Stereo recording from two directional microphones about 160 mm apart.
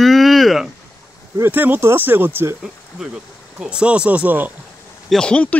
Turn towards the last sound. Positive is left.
turn(degrees=10)  # may be behind; listen again after turning